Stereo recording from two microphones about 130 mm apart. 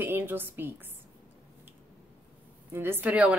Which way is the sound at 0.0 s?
15° right (ahead or behind).